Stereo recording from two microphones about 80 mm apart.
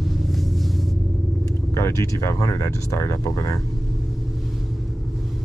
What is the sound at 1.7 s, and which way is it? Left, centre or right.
Speech, left.